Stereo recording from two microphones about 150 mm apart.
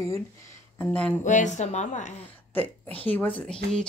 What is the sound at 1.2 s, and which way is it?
Speech, 55° left (ahead or behind).